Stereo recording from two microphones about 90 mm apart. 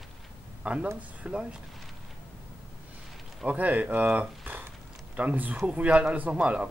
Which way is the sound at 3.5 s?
15° right (ahead or behind).